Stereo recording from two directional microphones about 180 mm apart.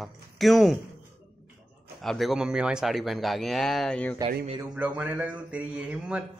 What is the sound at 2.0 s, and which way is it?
Speech, centre (ahead or behind).